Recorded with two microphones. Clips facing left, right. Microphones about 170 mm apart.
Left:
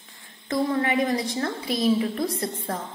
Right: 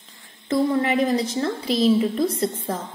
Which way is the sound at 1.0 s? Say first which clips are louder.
Right 3 dB; 25° right (ahead or behind).